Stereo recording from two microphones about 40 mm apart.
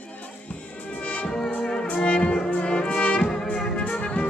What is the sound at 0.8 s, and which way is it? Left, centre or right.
Music, left.